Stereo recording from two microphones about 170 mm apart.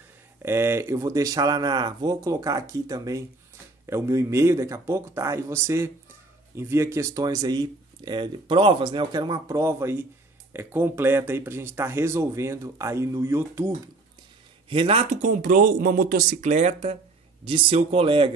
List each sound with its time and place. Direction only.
0.4 s speech: 15° right (ahead or behind)
14.7 s speech: 35° right (ahead or behind)